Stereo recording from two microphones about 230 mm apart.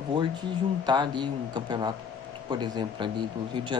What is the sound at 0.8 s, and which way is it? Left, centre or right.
Speech, centre.